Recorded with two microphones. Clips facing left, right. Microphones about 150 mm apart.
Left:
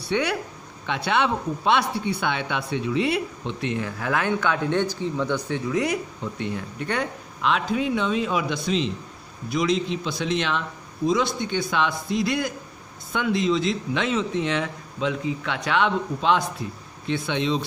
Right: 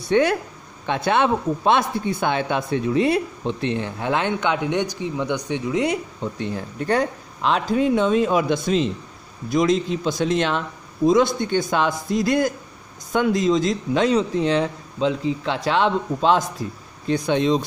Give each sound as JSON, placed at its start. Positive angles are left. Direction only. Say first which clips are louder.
{"t": 0.0, "sound": "a man's voice", "louder": "right 6 dB", "side_deg": -45}